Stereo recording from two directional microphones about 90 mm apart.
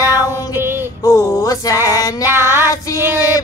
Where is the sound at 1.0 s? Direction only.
35° left (ahead or behind).